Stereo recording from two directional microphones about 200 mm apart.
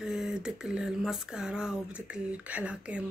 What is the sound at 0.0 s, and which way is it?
Speech, 5° right (ahead or behind).